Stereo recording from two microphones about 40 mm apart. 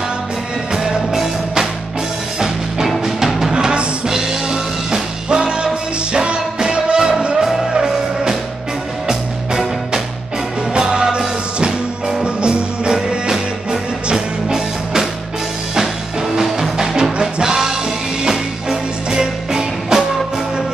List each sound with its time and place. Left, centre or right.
1.1 s music: centre
3.3 s music: centre
3.5 s music: centre
10.7 s music: right
16.3 s music: centre